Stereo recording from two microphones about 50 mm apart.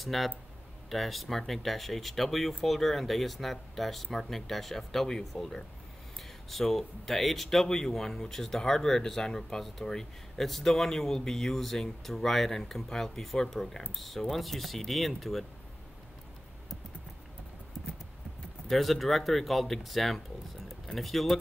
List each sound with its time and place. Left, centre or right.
0.0 s speech: centre
18.7 s speech: centre